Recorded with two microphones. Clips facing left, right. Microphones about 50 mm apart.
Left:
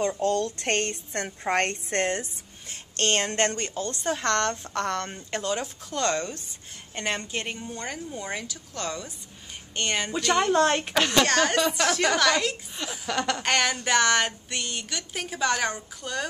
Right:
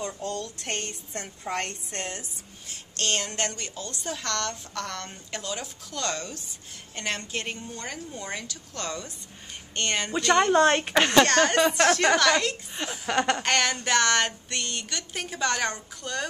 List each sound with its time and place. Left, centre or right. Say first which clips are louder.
0.2 s a woman's voice: left 8 dB; left
7.0 s a woman's voice: left 2 dB; centre
11.2 s a woman's voice: right 2 dB; centre
13.0 s a sound: right 3 dB; right
13.4 s a woman's voice: even; centre